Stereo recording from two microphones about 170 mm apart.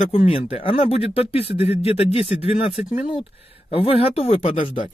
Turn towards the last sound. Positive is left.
turn(degrees=35)  # may be behind; listen again after turning